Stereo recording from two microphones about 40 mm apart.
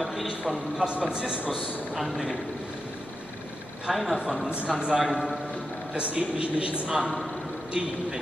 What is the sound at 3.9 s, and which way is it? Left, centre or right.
Speech, centre.